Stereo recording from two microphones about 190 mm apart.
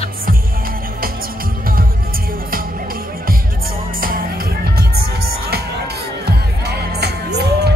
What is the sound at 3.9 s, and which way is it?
Music, 50° right (ahead or behind).